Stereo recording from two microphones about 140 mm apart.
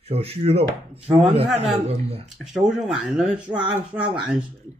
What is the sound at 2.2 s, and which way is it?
Cutlery, centre (ahead or behind).